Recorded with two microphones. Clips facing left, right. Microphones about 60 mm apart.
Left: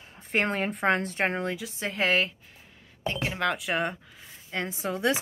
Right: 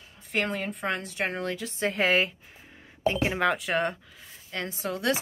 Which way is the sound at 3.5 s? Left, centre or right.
Centre.